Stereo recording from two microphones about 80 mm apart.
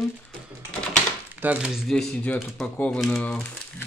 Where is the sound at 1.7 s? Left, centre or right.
Centre.